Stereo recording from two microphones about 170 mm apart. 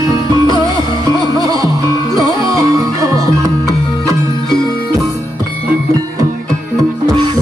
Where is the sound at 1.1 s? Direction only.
20° right (ahead or behind).